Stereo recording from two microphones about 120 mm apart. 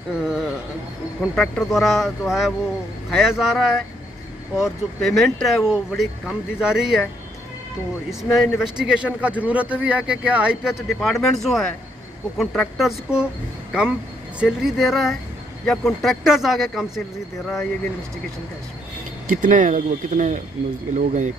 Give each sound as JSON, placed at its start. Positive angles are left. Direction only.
{"t": 0.2, "sound": "a sound", "side_deg": -5}
{"t": 1.3, "sound": "speech", "side_deg": 5}
{"t": 8.1, "sound": "a man's voice", "side_deg": 0}
{"t": 19.2, "sound": "speech", "side_deg": -90}